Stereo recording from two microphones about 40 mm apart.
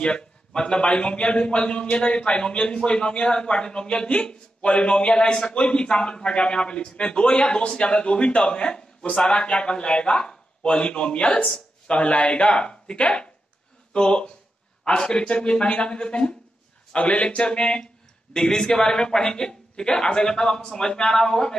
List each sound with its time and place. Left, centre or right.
0.0 s a man's voice: left